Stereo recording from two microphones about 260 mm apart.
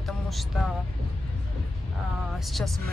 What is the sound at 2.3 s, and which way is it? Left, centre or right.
Speech, centre.